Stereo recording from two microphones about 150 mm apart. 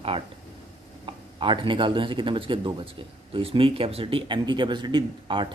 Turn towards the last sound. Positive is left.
turn(degrees=-30)  # may be behind; listen again after turning